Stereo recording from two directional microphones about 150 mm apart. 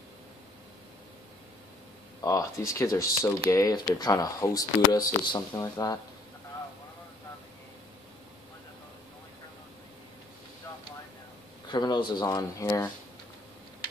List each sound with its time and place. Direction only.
2.2 s speech: 20° left (ahead or behind)
11.7 s speech: 30° left (ahead or behind)